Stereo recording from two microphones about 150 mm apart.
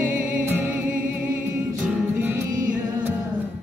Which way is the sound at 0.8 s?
65° right (ahead or behind).